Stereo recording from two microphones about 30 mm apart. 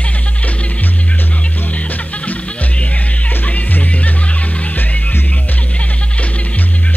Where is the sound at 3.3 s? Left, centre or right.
Left.